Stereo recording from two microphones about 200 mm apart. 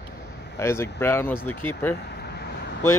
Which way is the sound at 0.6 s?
10° left (ahead or behind).